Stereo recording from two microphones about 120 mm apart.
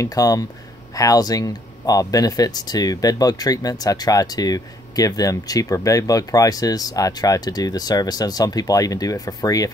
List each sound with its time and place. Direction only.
0.0 s speech: 30° left (ahead or behind)